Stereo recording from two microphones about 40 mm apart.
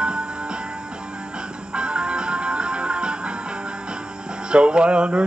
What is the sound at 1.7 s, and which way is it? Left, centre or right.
Music, right.